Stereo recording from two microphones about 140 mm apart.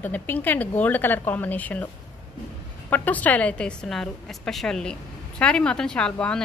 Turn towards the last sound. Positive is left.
turn(degrees=5)  # may be behind; listen again after turning